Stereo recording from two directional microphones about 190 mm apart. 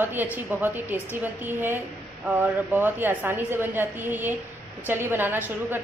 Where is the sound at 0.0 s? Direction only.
10° right (ahead or behind).